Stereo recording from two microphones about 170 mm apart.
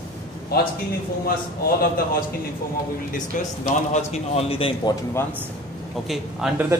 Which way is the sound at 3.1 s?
45° left (ahead or behind).